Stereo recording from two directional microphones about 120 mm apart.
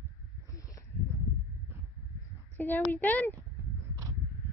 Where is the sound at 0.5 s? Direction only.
30° left (ahead or behind).